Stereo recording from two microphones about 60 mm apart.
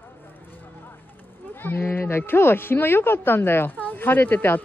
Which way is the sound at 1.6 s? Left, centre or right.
Left.